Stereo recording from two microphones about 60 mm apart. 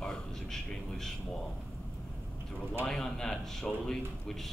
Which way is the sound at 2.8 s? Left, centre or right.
Centre.